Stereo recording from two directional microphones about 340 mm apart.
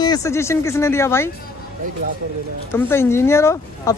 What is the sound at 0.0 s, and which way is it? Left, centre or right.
A woman's voice, centre.